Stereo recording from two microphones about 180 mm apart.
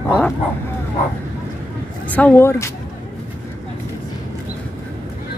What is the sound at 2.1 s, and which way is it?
Speech, 10° left (ahead or behind).